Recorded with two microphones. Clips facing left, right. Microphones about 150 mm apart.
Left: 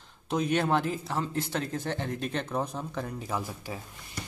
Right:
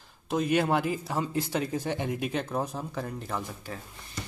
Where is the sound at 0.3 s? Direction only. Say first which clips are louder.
Right 1 dB; 5° right (ahead or behind).